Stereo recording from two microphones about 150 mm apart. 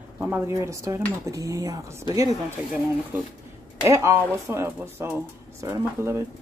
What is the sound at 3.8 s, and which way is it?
Speech, 20° right (ahead or behind).